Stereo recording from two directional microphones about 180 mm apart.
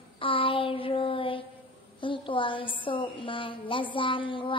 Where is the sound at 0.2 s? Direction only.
30° left (ahead or behind).